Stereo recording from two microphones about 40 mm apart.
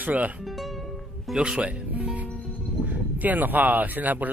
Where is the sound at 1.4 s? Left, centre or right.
Right.